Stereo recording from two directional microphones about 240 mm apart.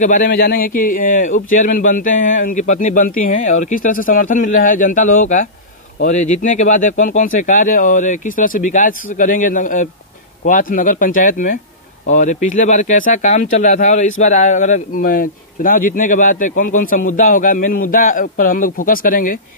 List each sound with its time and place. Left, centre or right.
0.0 s speech: left